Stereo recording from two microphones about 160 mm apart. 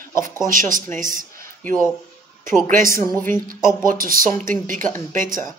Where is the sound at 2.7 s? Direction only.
55° right (ahead or behind).